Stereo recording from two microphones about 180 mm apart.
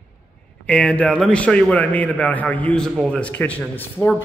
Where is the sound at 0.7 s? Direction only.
5° left (ahead or behind).